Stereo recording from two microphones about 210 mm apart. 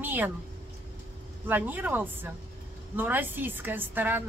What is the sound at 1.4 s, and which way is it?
A woman's voice, 10° right (ahead or behind).